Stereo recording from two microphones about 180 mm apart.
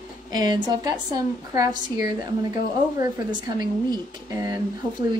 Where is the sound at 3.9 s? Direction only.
20° right (ahead or behind).